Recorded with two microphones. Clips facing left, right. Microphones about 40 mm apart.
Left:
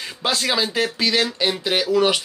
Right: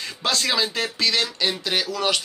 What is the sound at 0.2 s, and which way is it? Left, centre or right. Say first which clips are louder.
Speech: left 2 dB; centre.